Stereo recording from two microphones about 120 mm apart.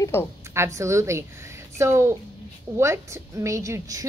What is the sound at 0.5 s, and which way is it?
A woman's voice, 25° right (ahead or behind).